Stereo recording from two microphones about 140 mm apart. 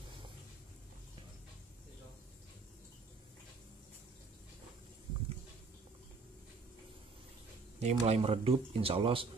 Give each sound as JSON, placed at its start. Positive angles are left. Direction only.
{"t": 7.8, "sound": "speech", "side_deg": -50}